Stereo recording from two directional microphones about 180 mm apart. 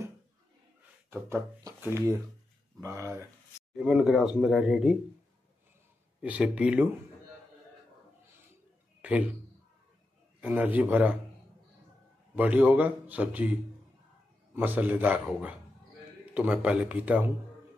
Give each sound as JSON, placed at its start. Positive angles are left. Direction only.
{"t": 1.1, "sound": "a man's voice", "side_deg": -15}
{"t": 3.7, "sound": "speech", "side_deg": 0}
{"t": 6.2, "sound": "a man's voice", "side_deg": -5}
{"t": 9.0, "sound": "a man's voice", "side_deg": -10}
{"t": 10.4, "sound": "a man's voice", "side_deg": -10}
{"t": 12.4, "sound": "a man's voice", "side_deg": -10}